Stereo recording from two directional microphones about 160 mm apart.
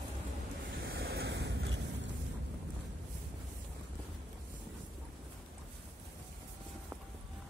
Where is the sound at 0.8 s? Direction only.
80° right.